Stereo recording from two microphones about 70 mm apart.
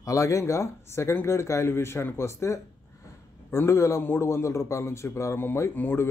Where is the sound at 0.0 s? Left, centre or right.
Left.